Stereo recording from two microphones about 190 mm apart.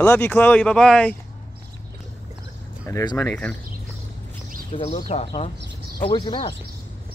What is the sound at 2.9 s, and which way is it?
Speech, 15° left (ahead or behind).